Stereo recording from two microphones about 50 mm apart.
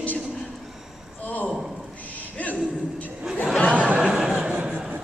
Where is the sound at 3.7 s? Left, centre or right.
Right.